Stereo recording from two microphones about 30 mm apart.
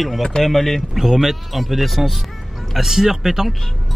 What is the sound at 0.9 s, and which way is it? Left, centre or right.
Speech, centre.